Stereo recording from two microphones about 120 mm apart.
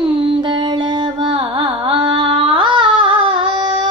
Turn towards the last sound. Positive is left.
turn(degrees=-40)  # may be behind; listen again after turning